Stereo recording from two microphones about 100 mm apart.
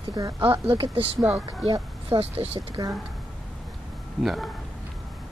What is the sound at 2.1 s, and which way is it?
Speech, 80° right.